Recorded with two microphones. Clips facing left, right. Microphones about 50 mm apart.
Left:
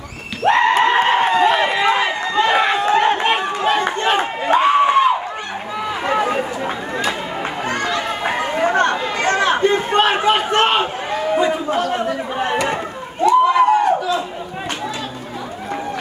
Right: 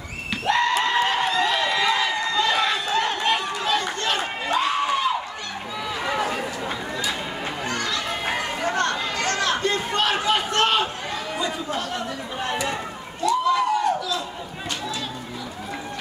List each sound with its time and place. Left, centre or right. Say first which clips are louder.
0.5 s a sound: left 7 dB; left
4.2 s crowd: left 8 dB; left
5.9 s run: left 6 dB; left
7.6 s children playing: left 6 dB; left
8.3 s chatter: left 8 dB; left
13.2 s a sound: left 8 dB; left